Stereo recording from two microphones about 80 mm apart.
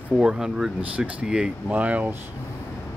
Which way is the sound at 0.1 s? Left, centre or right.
Centre.